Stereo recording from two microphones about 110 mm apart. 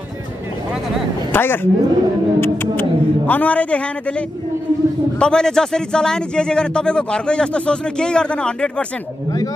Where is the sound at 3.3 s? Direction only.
15° left (ahead or behind).